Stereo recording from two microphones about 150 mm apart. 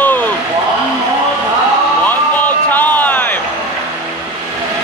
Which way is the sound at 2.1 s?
10° left (ahead or behind).